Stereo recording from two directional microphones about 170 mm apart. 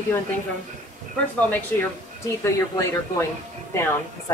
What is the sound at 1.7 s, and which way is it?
Speech, 15° left (ahead or behind).